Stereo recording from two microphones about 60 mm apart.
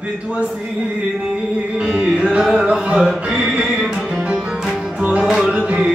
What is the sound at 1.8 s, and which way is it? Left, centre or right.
Music, centre.